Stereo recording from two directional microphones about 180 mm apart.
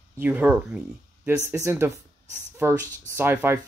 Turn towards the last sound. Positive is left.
turn(degrees=-10)  # may be behind; listen again after turning